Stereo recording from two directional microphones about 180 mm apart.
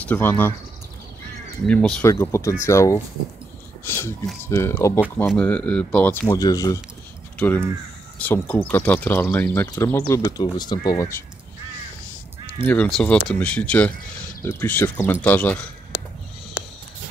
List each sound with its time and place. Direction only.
0.0 s speech: 10° left (ahead or behind)
1.7 s speech: 5° left (ahead or behind)
5.2 s speech: centre (ahead or behind); by 11.1 s 20° left (ahead or behind)
12.6 s speech: 5° left (ahead or behind)